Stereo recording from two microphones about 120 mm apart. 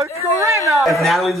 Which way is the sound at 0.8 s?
Centre (ahead or behind).